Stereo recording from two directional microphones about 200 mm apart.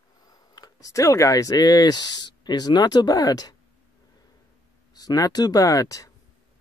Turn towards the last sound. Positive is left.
turn(degrees=15)  # may be behind; listen again after turning